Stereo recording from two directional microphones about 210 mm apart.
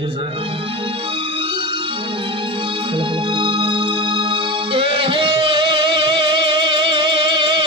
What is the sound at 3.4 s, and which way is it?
Music, 25° right (ahead or behind).